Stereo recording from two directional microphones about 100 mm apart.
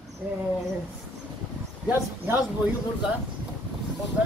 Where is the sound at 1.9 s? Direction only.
15° right (ahead or behind).